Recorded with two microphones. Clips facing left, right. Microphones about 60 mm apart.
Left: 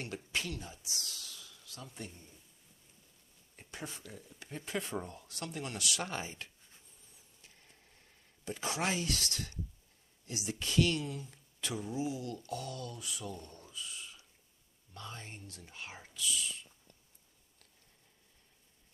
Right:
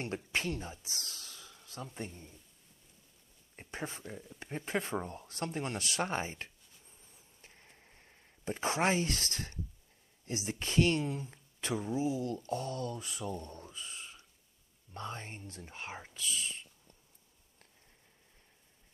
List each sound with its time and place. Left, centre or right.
0.0 s speech: right
3.5 s speech: right
7.4 s a sound: right
10.2 s speech: right